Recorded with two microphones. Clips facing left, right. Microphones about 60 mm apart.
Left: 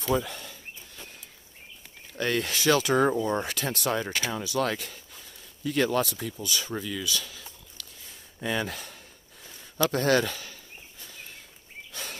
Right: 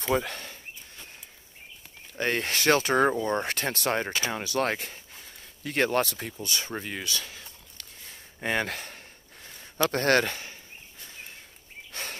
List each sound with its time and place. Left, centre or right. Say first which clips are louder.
0.0 s speech: even; right
2.1 s speech: even; right
5.6 s speech: even; right
8.4 s a sound: right 1 dB; right
9.8 s speech: even; right
10.3 s a sound: right 1 dB; right
11.9 s bird vocalization: right 2 dB; right